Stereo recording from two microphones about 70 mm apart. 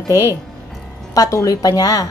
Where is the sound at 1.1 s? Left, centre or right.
Left.